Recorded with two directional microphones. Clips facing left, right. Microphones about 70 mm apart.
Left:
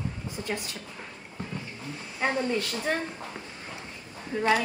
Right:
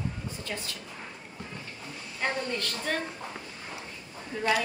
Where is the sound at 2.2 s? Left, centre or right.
Centre.